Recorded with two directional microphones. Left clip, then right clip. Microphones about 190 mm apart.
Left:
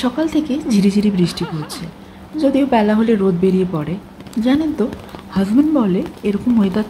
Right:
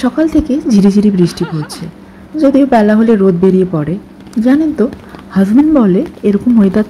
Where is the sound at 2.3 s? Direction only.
15° right (ahead or behind).